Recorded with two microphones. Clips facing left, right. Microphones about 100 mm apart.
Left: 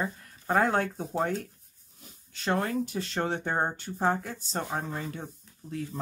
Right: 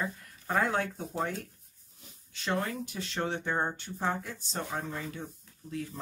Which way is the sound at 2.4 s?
40° left (ahead or behind).